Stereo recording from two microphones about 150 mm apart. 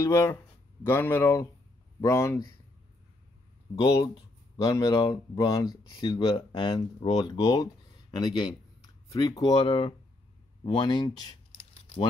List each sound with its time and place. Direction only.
0.0 s speech: 20° left (ahead or behind)
3.8 s speech: 30° left (ahead or behind)
11.7 s typing: 35° left (ahead or behind)